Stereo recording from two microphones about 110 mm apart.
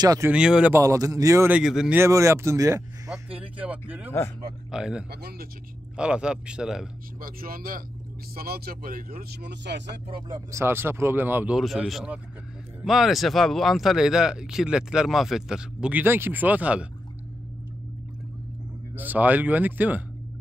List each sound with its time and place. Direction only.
0.0 s speech: 30° right (ahead or behind)
0.3 s speech: 10° right (ahead or behind)
0.7 s speech: 30° right (ahead or behind)
1.5 s speech: 5° right (ahead or behind)
2.0 s speech: 25° right (ahead or behind)
3.1 s speech: 10° right (ahead or behind)
10.5 s speech: 20° right (ahead or behind)
11.5 s speech: centre (ahead or behind)
18.9 s speech: 15° right (ahead or behind)